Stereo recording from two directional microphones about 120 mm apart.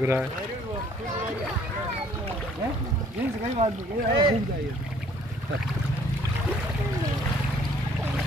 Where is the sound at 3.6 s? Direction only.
75° right (ahead or behind).